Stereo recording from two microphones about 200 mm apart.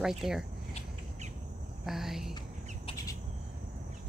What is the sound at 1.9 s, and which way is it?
Speech, centre (ahead or behind).